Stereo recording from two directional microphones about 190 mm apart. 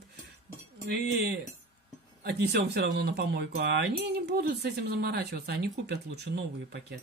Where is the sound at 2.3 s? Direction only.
60° right (ahead or behind).